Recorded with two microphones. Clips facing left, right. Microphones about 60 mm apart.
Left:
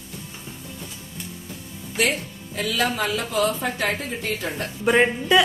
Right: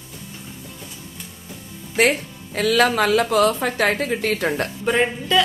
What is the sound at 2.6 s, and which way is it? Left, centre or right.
Speech, right.